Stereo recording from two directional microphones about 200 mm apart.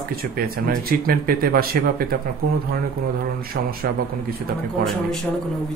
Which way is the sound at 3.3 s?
50° right (ahead or behind).